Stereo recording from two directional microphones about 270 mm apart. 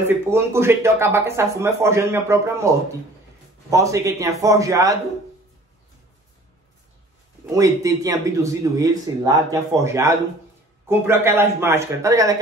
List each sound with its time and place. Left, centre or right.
0.1 s speech: centre
7.4 s speech: centre